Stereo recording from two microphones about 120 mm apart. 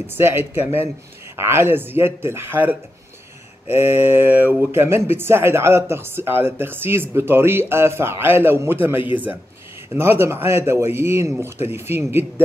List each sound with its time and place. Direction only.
0.0 s a man's voice: 20° right (ahead or behind)